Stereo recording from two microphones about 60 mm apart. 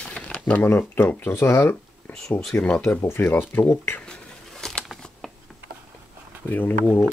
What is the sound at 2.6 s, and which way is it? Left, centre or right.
Speech, left.